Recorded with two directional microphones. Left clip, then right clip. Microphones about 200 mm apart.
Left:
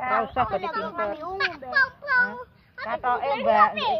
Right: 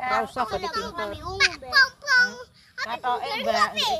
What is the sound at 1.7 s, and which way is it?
Children playing, 65° right (ahead or behind).